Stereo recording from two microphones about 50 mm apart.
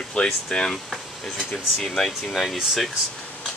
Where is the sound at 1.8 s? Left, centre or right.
Centre.